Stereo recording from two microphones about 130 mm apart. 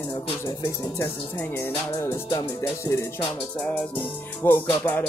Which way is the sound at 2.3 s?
25° left (ahead or behind).